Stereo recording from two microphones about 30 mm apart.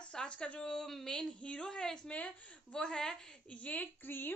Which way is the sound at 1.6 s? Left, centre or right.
Left.